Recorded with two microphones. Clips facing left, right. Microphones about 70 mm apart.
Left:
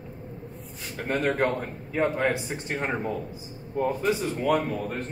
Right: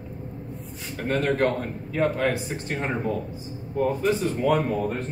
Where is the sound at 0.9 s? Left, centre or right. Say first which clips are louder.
Right 2 dB; centre.